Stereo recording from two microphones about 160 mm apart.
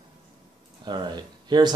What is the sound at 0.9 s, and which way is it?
Speech, 25° right (ahead or behind).